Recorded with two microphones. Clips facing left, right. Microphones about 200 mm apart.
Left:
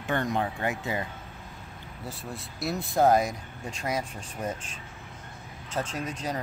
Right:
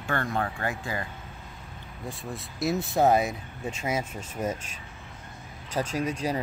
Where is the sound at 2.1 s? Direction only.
Centre (ahead or behind).